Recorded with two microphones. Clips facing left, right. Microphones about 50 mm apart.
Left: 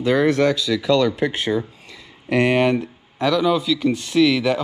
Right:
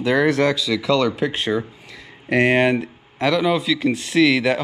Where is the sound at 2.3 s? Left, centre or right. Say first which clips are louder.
Right 1 dB; right.